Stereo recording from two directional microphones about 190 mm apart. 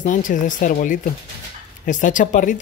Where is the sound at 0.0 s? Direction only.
40° left (ahead or behind).